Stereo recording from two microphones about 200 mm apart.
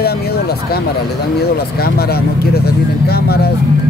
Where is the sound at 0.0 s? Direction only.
50° left (ahead or behind).